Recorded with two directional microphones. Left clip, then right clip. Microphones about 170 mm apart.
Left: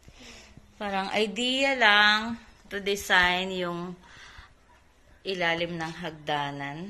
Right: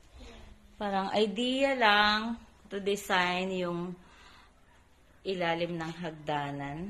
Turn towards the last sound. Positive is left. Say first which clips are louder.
# left 4 dB
turn(degrees=0)  # may be behind; listen again after turning